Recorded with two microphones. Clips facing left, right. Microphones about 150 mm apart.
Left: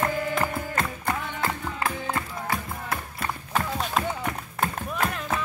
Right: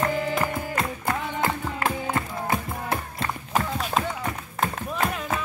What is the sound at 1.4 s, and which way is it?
Music, 25° right (ahead or behind).